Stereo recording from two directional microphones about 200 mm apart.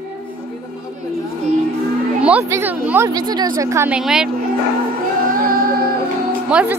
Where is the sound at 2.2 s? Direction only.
10° right (ahead or behind).